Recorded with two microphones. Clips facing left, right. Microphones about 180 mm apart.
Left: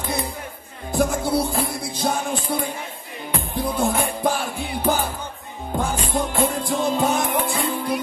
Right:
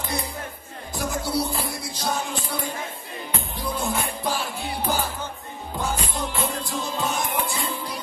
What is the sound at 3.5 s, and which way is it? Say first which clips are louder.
Music: left 6 dB; 55° left (ahead or behind).